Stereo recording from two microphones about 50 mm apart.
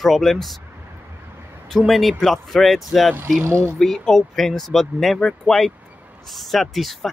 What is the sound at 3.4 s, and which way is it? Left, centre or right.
Speech, right.